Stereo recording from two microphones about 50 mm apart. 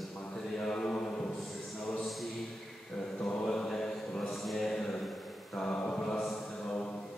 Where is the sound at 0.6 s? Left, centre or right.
Centre.